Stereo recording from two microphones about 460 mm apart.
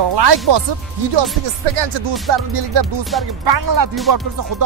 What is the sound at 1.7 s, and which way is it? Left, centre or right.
Music, right.